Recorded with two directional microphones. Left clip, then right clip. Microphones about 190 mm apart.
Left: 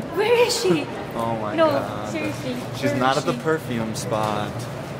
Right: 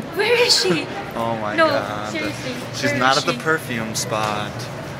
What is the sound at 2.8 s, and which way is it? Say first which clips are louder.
Speech: right 4 dB; 5° left (ahead or behind).